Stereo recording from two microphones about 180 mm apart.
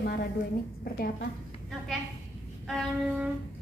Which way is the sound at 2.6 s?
Centre (ahead or behind).